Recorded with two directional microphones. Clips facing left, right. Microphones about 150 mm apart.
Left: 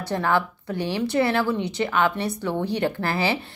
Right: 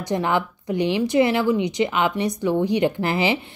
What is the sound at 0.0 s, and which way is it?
A woman's voice, 15° right (ahead or behind).